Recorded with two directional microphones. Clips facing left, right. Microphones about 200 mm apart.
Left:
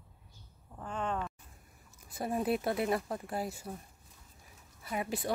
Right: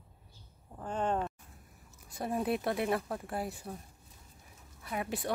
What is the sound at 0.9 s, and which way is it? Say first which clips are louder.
Speech: right 4 dB; 40° right (ahead or behind).